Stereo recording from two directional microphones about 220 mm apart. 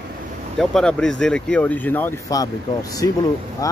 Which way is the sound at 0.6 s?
5° left (ahead or behind).